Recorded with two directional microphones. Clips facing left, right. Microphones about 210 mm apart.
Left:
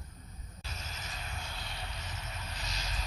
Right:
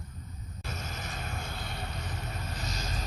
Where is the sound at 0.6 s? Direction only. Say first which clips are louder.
Right 7 dB; 55° right (ahead or behind).